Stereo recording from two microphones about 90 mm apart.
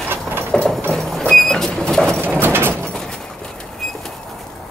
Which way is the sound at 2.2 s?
25° right (ahead or behind).